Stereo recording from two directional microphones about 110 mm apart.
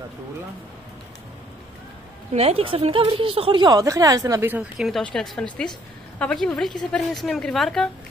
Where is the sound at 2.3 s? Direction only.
65° right (ahead or behind).